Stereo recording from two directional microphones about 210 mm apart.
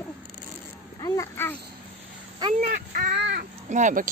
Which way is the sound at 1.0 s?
15° left (ahead or behind).